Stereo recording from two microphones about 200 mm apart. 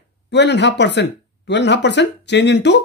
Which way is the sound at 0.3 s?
60° left (ahead or behind).